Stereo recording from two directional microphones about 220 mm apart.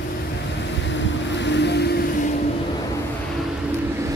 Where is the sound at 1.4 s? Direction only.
50° left (ahead or behind).